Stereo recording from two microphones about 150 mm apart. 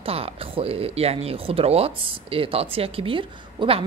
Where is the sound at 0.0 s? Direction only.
40° right (ahead or behind).